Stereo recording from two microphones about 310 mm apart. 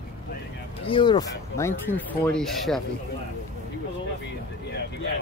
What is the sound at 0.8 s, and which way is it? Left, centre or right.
Speech, centre.